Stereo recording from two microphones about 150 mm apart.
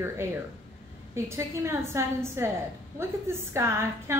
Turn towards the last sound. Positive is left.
turn(degrees=-15)  # may be behind; listen again after turning